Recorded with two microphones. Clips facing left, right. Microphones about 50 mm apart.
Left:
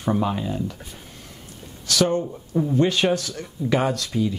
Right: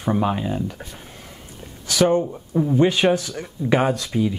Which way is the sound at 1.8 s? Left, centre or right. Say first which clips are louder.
Right 3 dB; right.